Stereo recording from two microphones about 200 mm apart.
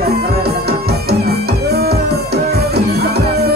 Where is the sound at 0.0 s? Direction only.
55° right (ahead or behind).